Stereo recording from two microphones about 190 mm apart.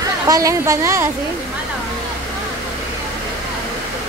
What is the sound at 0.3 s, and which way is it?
Speech, 15° right (ahead or behind).